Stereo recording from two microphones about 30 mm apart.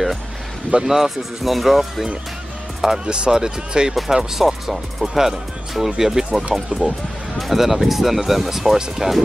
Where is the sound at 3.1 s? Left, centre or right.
Right.